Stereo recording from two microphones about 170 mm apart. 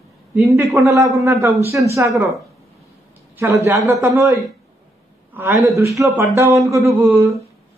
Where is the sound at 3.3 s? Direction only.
15° right (ahead or behind).